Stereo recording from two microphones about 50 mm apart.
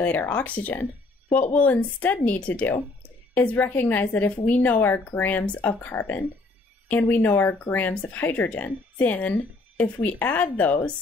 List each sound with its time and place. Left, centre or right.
0.0 s speech: left
5.4 s speech: left
7.9 s speech: left
8.2 s speech: left